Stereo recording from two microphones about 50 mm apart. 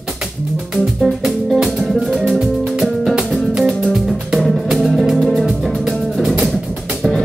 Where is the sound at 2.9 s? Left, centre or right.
Centre.